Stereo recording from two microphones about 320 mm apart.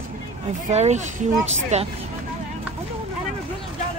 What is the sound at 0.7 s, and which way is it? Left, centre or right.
Speech, right.